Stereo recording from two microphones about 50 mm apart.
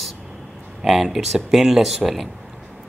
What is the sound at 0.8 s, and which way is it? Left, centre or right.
Speech, centre.